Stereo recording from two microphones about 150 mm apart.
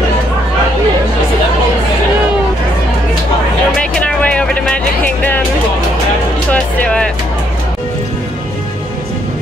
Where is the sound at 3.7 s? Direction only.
10° left (ahead or behind).